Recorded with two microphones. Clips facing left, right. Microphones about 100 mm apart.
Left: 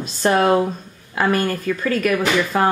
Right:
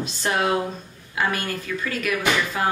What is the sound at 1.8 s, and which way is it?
Speech, 45° left (ahead or behind).